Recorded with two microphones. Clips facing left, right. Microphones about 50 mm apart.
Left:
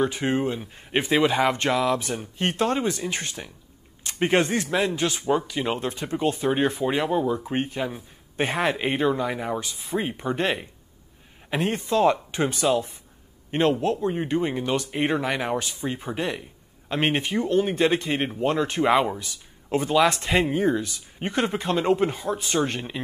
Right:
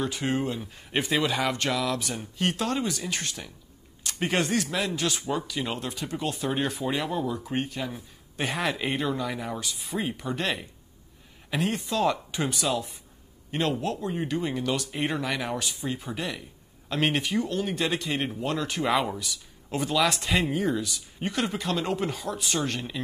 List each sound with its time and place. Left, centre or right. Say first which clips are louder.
0.0 s speech: left 4 dB; left